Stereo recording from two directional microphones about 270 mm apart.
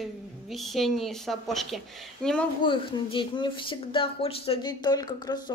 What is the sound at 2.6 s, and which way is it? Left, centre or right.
Speech, centre.